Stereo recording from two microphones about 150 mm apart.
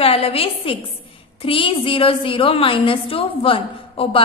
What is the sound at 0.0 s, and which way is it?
A woman's voice, 40° left (ahead or behind).